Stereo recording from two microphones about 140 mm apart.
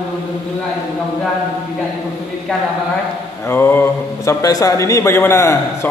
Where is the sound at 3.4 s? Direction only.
15° left (ahead or behind).